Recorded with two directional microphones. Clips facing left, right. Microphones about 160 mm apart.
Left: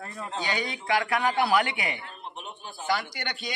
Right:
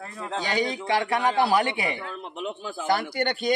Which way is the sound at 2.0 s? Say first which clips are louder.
Right 7 dB; 90° right.